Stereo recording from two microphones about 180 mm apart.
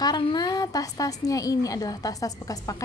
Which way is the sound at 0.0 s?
20° left (ahead or behind).